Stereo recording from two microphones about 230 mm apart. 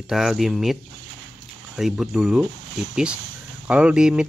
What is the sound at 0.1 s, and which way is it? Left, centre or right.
Speech, centre.